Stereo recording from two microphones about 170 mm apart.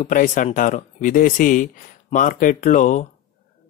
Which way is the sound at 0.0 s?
50° left (ahead or behind).